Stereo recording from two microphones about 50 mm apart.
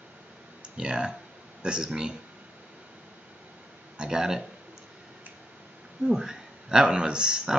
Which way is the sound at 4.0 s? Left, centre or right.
Centre.